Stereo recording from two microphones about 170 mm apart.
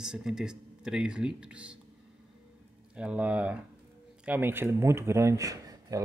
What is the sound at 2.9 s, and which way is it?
Speech, 5° right (ahead or behind).